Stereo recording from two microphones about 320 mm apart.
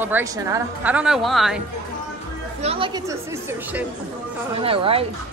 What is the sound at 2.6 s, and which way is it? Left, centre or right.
A woman's voice, centre.